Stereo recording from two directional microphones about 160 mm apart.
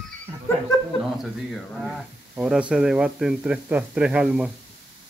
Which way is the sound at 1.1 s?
Centre (ahead or behind).